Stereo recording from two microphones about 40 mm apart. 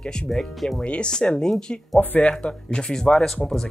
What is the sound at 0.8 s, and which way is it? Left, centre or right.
Speech, left.